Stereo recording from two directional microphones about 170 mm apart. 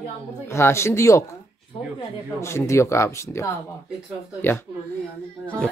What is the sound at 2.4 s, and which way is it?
Speech, 15° left (ahead or behind).